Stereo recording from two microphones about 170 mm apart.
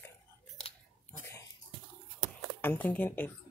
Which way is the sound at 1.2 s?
20° left (ahead or behind).